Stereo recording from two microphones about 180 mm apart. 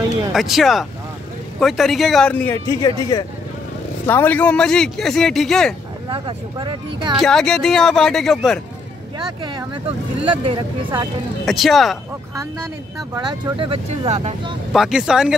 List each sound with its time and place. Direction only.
0.3 s speech: centre (ahead or behind); by 3.3 s 20° left (ahead or behind)
4.1 s speech: 10° left (ahead or behind)
6.0 s speech: 25° right (ahead or behind)
7.2 s speech: 5° left (ahead or behind)
9.2 s speech: 20° right (ahead or behind)
11.4 s speech: centre (ahead or behind)
13.1 s speech: 20° right (ahead or behind)
14.7 s speech: 5° right (ahead or behind)